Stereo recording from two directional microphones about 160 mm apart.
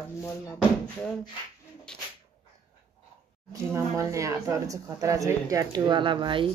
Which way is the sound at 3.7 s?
20° right (ahead or behind).